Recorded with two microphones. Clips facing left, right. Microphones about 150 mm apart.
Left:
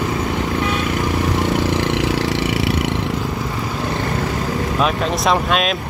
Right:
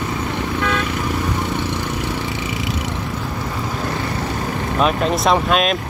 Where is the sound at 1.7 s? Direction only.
90° left; by 2.8 s 70° left (ahead or behind).